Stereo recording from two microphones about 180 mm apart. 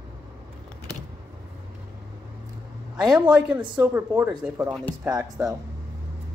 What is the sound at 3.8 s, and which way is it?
Speech, 15° right (ahead or behind).